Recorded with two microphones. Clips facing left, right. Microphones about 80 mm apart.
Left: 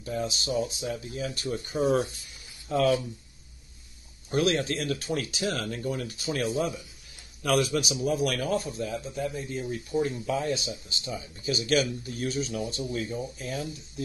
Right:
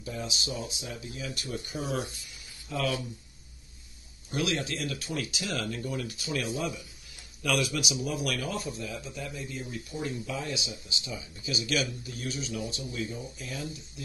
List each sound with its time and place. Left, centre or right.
0.0 s speech: left
4.3 s speech: left